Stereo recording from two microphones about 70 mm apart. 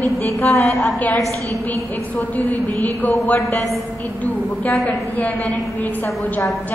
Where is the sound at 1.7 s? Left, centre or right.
Left.